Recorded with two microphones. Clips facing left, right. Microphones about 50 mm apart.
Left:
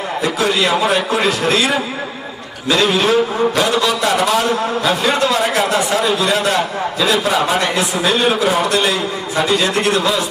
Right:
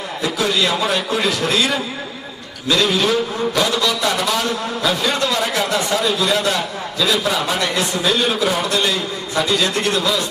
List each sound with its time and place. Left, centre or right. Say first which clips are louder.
0.2 s a man's voice: left 2 dB; left